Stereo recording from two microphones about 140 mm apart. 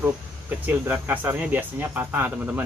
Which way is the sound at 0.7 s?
10° right (ahead or behind).